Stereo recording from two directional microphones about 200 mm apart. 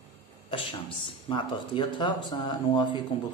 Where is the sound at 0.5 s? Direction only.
25° left (ahead or behind).